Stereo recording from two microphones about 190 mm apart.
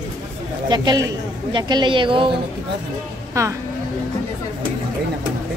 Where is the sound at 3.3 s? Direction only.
15° right (ahead or behind).